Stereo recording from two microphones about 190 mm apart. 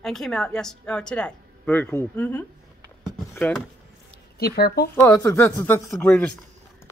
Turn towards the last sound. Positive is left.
turn(degrees=5)  # may be behind; listen again after turning